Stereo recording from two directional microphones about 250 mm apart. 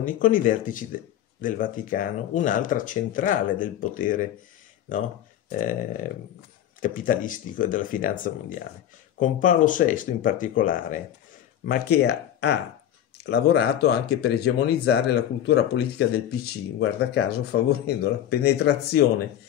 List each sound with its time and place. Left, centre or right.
0.0 s speech: left
5.5 s speech: left
6.8 s speech: left